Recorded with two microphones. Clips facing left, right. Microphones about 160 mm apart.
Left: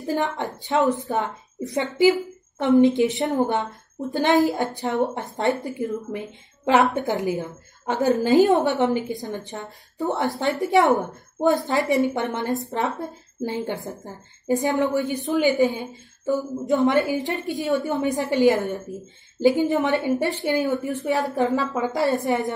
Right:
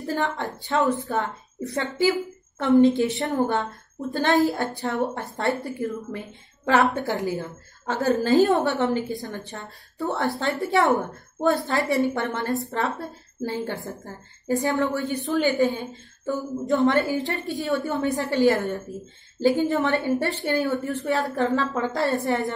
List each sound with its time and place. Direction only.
0.0 s a woman's voice: 15° left (ahead or behind)